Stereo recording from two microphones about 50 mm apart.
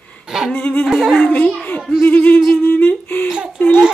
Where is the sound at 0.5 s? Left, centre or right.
Left.